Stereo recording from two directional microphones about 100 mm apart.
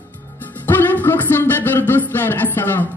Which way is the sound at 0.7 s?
20° left (ahead or behind).